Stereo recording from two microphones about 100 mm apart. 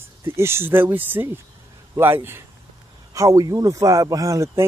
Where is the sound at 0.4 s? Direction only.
25° right (ahead or behind).